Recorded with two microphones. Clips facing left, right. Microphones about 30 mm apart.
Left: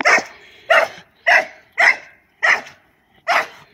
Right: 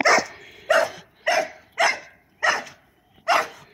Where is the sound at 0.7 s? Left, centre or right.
Left.